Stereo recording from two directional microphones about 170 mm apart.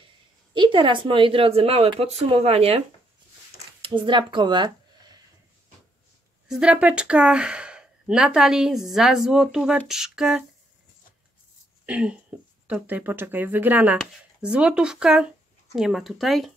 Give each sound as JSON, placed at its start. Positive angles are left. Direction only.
{"t": 0.6, "sound": "speech", "side_deg": -30}
{"t": 3.8, "sound": "speech", "side_deg": -30}
{"t": 6.5, "sound": "speech", "side_deg": -5}
{"t": 11.8, "sound": "speech", "side_deg": -5}